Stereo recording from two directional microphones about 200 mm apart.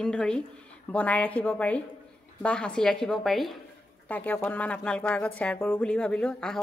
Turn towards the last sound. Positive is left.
turn(degrees=5)  # may be behind; listen again after turning